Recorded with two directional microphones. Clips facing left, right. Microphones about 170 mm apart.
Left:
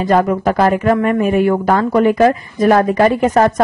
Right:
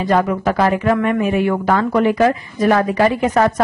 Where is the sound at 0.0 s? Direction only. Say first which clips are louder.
Left 3 dB; 45° left (ahead or behind).